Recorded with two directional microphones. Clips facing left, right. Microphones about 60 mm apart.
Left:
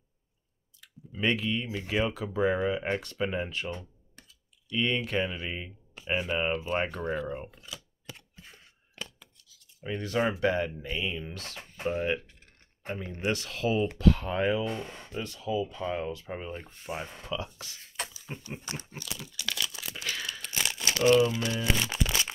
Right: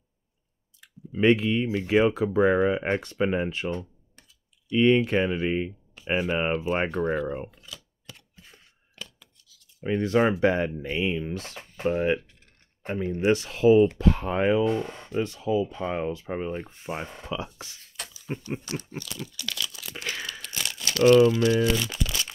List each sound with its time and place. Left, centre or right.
0.7 s speech: right
7.5 s camera: centre
8.9 s scissors: left
9.8 s speech: right
17.9 s a sound: left
18.7 s speech: left
20.0 s speech: right
20.4 s crumpling: left
21.6 s speech: left